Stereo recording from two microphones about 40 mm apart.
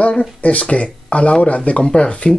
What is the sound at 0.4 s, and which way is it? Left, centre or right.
Speech, left.